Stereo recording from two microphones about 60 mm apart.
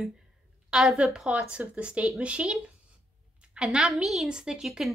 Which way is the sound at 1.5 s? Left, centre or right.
Centre.